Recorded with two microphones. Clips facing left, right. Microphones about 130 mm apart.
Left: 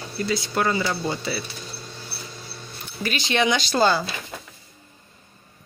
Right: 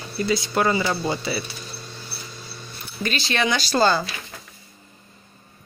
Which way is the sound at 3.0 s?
15° left (ahead or behind).